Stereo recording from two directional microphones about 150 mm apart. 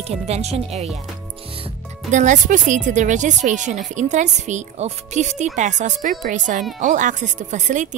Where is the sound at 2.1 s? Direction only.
55° right (ahead or behind).